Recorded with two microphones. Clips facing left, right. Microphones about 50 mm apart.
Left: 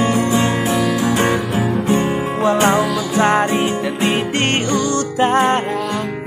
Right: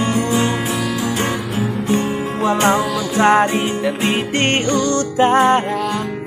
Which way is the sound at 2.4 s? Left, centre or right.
Centre.